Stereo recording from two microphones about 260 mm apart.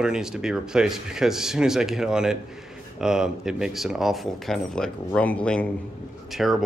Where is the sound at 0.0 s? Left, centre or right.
Centre.